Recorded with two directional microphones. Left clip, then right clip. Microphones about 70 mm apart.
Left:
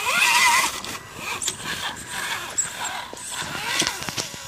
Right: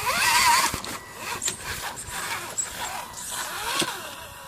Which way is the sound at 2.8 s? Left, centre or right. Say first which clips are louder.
Left 3 dB; right.